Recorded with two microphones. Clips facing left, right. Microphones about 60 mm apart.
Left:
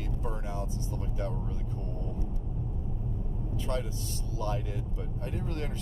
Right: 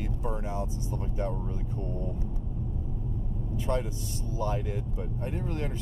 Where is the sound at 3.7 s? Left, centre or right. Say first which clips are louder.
Right 4 dB; right.